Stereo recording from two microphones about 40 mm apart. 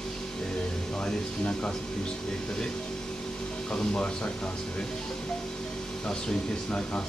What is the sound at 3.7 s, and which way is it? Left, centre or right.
Speech, left.